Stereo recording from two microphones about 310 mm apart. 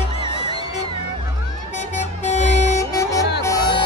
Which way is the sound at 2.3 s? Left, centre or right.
Left.